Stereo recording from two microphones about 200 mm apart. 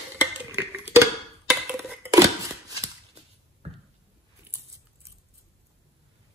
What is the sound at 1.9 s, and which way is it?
Chopping, 15° right (ahead or behind).